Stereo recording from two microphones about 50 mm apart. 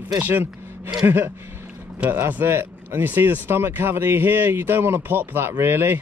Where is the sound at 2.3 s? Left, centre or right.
Right.